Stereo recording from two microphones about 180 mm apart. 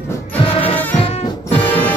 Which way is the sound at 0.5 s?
30° left (ahead or behind).